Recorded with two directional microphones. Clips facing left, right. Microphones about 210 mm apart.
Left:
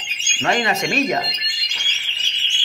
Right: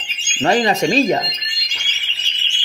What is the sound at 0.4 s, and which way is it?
Speech, 35° right (ahead or behind).